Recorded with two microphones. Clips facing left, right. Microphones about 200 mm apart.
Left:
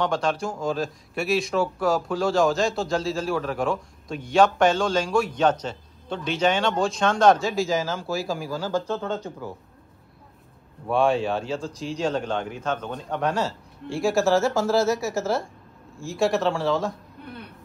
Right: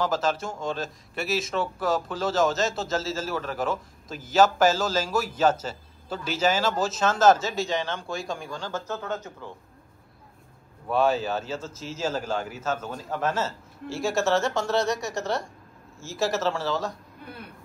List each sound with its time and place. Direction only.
0.0 s speech: centre (ahead or behind)
9.0 s speech: 30° left (ahead or behind)
10.9 s speech: centre (ahead or behind)